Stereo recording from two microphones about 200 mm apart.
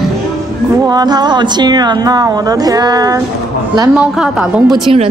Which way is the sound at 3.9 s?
5° right (ahead or behind).